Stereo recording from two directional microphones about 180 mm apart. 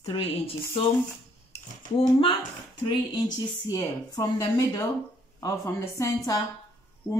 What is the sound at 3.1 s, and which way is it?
Speech, 20° left (ahead or behind).